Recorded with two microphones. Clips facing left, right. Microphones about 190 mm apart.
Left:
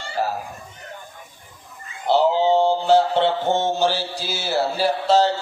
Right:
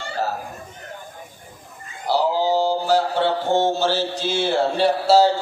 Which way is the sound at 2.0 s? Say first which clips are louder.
Left 3 dB; 25° left (ahead or behind).